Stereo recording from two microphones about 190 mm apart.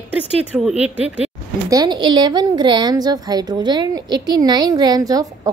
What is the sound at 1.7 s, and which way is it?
A woman's voice, 20° right (ahead or behind).